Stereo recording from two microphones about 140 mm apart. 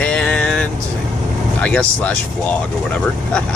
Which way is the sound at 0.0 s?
5° left (ahead or behind).